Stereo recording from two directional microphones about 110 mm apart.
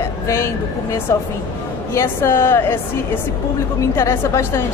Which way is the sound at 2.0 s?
25° left (ahead or behind).